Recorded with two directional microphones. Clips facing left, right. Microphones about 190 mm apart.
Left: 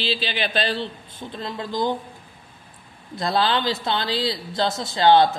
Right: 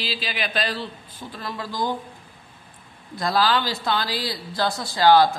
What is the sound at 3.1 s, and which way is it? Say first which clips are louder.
Speech: even; 25° left (ahead or behind).